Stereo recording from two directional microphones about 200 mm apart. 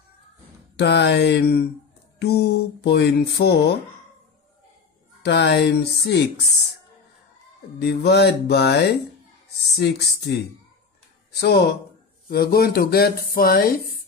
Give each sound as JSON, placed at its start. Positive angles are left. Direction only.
{"t": 0.7, "sound": "speech", "side_deg": 55}
{"t": 5.2, "sound": "speech", "side_deg": 55}
{"t": 7.8, "sound": "speech", "side_deg": 55}
{"t": 11.3, "sound": "speech", "side_deg": 55}